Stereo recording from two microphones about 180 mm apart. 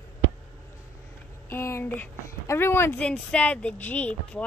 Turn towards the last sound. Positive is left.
turn(degrees=10)  # may be behind; listen again after turning